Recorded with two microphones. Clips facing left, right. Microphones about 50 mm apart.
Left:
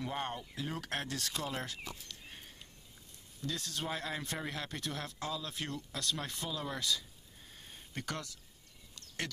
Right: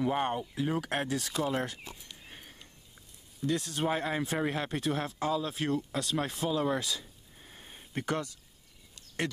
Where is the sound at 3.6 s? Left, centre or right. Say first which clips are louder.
Right 8 dB; centre.